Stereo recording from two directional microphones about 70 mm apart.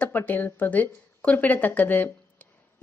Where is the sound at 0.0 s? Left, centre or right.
Left.